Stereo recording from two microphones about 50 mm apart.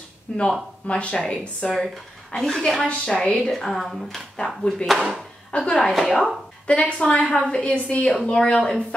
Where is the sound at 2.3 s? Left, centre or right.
Centre.